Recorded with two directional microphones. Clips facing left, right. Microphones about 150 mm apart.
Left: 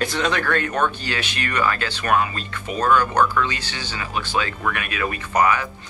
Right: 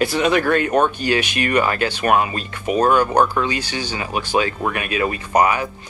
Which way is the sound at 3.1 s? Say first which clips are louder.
Right 3 dB; 35° right (ahead or behind).